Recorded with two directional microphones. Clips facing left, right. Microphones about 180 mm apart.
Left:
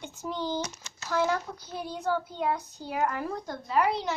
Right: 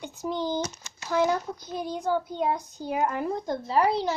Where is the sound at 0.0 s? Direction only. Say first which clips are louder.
Right 4 dB; 15° right (ahead or behind).